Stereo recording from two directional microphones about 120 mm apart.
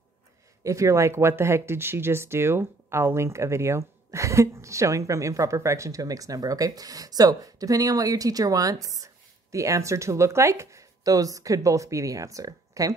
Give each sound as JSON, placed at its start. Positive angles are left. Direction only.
{"t": 0.7, "sound": "a woman's voice", "side_deg": -25}